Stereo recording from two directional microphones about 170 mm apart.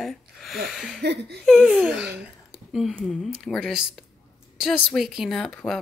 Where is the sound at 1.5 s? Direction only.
Centre (ahead or behind).